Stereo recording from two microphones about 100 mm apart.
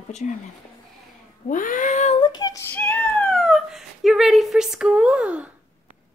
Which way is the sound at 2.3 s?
50° left (ahead or behind).